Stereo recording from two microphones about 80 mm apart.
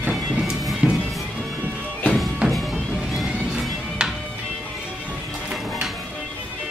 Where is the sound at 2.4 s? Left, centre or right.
Centre.